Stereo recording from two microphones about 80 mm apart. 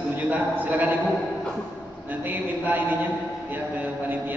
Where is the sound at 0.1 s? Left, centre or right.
Right.